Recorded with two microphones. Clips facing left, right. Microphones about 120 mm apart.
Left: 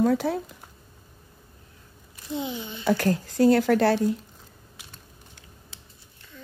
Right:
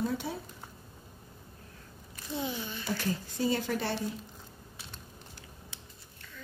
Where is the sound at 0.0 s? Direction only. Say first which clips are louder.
Left 11 dB; 75° left (ahead or behind).